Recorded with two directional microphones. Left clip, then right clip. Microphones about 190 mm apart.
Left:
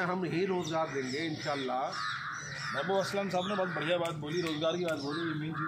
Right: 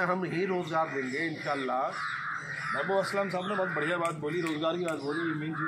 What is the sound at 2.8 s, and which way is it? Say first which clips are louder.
A man's voice: right 2 dB; 15° left (ahead or behind).